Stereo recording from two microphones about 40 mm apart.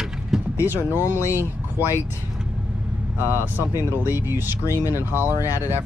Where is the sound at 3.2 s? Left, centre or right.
Right.